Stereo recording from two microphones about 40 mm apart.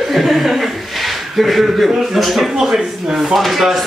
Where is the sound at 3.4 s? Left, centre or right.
Centre.